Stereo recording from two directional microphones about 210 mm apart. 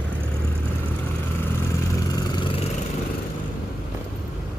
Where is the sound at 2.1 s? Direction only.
20° left (ahead or behind).